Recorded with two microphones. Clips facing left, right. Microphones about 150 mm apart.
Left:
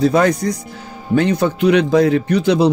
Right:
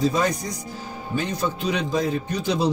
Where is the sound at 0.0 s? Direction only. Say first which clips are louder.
Left 8 dB; 75° left (ahead or behind).